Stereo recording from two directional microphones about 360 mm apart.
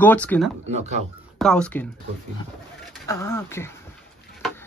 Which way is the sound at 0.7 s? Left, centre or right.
Centre.